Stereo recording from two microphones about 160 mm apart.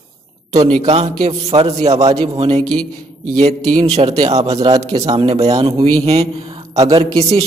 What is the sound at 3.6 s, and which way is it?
A man's voice, 25° right (ahead or behind).